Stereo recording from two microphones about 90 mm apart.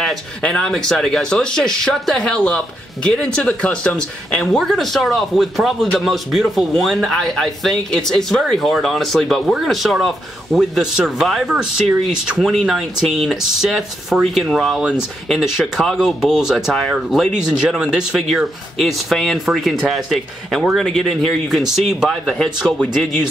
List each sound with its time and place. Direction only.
0.4 s a man's voice: 10° left (ahead or behind)
14.8 s a man's voice: 10° right (ahead or behind); by 22.8 s 5° left (ahead or behind)